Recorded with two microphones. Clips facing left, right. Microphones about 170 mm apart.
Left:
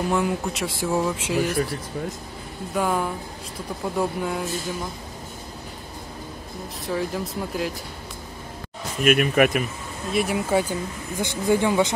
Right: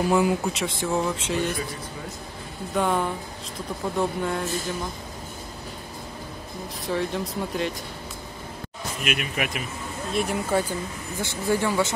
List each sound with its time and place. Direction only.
0.1 s speech: centre (ahead or behind)
1.5 s speech: 65° left (ahead or behind)
2.7 s speech: 5° left (ahead or behind)
6.9 s speech: centre (ahead or behind)
9.0 s speech: 50° left (ahead or behind)
10.1 s speech: 5° left (ahead or behind)
11.1 s speech: 15° left (ahead or behind)